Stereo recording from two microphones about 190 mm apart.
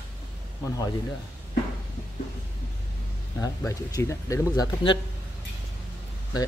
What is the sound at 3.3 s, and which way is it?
Speech, 15° left (ahead or behind).